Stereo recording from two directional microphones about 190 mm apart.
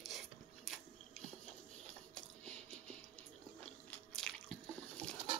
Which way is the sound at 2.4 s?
5° left (ahead or behind).